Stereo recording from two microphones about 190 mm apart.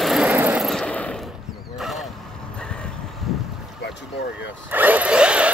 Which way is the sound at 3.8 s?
70° left (ahead or behind).